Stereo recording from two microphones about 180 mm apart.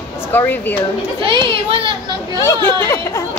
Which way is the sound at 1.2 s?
30° right (ahead or behind).